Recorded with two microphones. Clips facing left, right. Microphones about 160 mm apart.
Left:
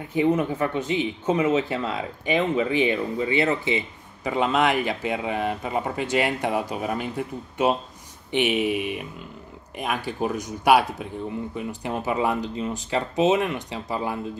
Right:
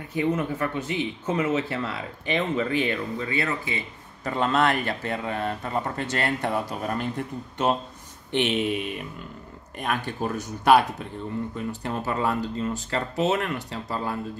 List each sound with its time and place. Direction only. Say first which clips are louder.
0.1 s speech: left 4 dB; 20° left (ahead or behind)
4.2 s speech: left 1 dB; 10° left (ahead or behind)